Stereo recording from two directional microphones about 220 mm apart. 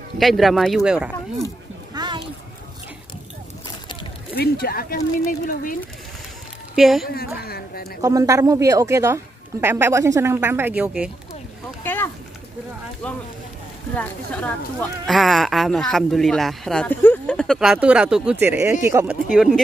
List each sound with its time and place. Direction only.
0.2 s speech: centre (ahead or behind)
2.0 s a sound: 20° right (ahead or behind)
4.4 s speech: 45° left (ahead or behind)
6.7 s speech: centre (ahead or behind)
7.1 s speech: 45° left (ahead or behind)
8.0 s a woman's voice: 15° right (ahead or behind)
11.8 s a sound: 10° left (ahead or behind)
13.0 s speech: 5° left (ahead or behind); by 19.1 s 10° right (ahead or behind)
19.3 s speech: centre (ahead or behind)